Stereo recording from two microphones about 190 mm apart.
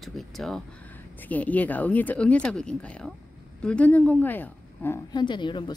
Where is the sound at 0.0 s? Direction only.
Centre (ahead or behind).